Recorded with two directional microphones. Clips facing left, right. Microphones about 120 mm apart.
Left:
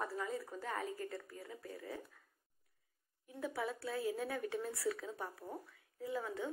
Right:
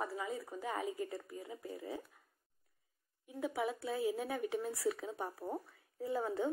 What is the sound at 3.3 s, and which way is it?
Speech, 15° right (ahead or behind).